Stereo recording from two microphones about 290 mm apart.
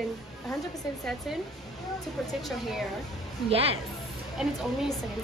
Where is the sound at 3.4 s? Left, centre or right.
Centre.